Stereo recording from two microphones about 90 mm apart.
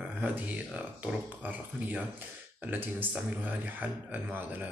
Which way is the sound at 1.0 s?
15° right (ahead or behind).